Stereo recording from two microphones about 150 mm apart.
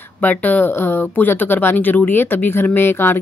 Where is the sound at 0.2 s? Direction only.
10° left (ahead or behind).